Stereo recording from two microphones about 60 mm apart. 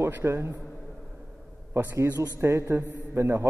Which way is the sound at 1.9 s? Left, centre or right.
Right.